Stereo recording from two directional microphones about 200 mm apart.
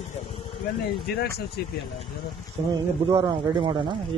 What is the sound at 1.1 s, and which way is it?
Speech, 55° left (ahead or behind).